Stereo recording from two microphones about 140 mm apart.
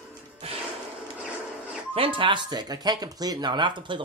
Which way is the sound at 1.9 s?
40° right (ahead or behind).